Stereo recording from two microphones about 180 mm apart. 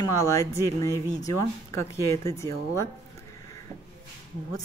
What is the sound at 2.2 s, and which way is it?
Speech, 15° left (ahead or behind).